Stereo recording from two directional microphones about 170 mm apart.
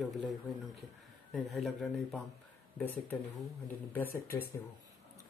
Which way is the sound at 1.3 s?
Centre (ahead or behind).